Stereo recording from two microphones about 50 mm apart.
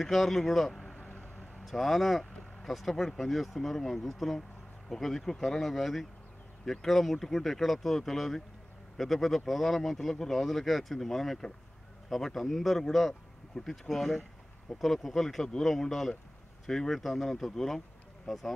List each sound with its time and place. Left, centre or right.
0.0 s speech: centre
0.8 s vehicle: left
1.6 s speech: centre